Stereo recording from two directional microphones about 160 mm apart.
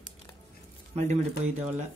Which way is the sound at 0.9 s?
45° right (ahead or behind).